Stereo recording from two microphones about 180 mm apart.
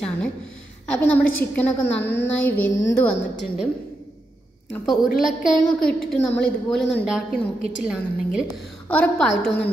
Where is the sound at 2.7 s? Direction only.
85° left.